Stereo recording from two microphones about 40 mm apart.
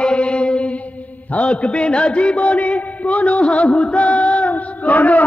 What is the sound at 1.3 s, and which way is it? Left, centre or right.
A man's voice, left.